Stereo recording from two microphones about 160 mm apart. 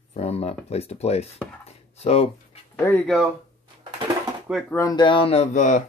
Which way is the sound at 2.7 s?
15° left (ahead or behind).